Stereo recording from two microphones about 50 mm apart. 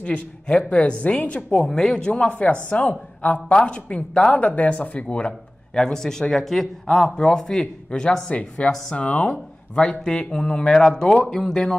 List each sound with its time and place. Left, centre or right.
0.0 s speech: centre
1.6 s speech: centre
2.0 s speech: left
5.8 s speech: centre
8.3 s speech: left; by 11.7 s centre